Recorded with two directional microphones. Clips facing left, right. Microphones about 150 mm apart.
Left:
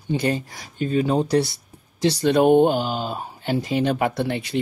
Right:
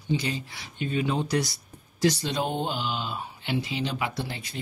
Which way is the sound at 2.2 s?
60° left (ahead or behind).